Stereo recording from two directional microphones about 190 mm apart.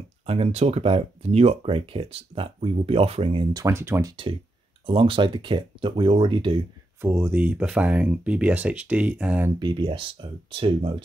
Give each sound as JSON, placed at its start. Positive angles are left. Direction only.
{"t": 0.3, "sound": "speech", "side_deg": -30}
{"t": 3.5, "sound": "speech", "side_deg": -15}
{"t": 4.8, "sound": "speech", "side_deg": -25}
{"t": 7.0, "sound": "speech", "side_deg": -10}
{"t": 9.6, "sound": "speech", "side_deg": -25}